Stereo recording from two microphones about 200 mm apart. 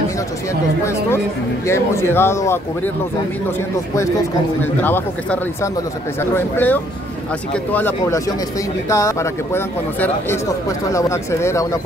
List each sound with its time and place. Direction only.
1.7 s a man's voice: 10° left (ahead or behind)
4.8 s a man's voice: 10° left (ahead or behind)